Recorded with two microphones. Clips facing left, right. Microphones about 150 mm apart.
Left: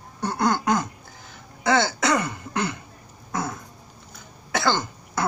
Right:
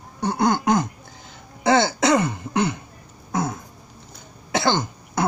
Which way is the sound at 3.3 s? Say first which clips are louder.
Right 4 dB; 15° right (ahead or behind).